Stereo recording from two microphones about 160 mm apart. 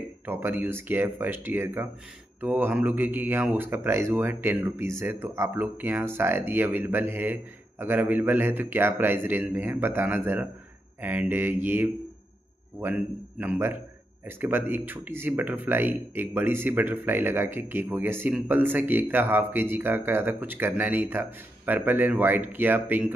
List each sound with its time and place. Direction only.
0.2 s speech: 15° right (ahead or behind)